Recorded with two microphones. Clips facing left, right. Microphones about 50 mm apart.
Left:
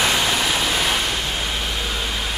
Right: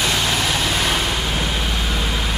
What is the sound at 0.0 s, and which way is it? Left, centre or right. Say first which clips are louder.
Vehicle: left 1 dB; centre.